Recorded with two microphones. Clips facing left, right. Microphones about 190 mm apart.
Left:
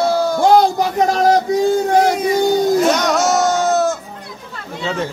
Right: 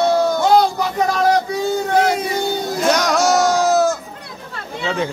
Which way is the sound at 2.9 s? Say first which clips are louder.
Even; centre (ahead or behind).